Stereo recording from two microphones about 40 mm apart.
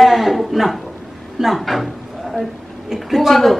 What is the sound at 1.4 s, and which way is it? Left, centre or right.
Speech, centre.